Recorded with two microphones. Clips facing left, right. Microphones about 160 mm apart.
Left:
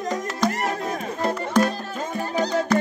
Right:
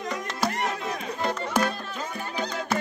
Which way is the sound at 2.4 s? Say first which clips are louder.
Left 9 dB; 40° left (ahead or behind).